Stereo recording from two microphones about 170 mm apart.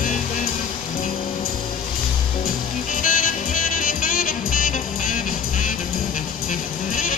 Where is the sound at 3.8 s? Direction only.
55° left (ahead or behind).